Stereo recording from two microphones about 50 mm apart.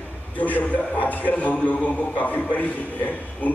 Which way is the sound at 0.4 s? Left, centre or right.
Left.